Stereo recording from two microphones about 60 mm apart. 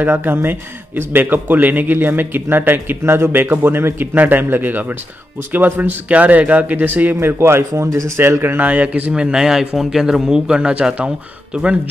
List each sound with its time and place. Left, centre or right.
0.0 s a man's voice: right
7.2 s speech: right
8.2 s speech: right
8.6 s a man's voice: right